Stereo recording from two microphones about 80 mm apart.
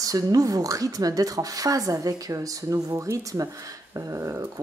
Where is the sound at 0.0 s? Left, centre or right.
Right.